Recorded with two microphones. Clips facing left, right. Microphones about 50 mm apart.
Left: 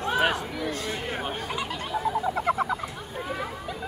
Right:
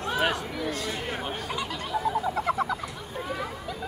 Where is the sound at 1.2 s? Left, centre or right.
Centre.